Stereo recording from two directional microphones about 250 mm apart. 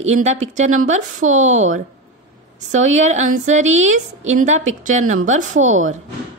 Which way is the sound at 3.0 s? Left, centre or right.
Right.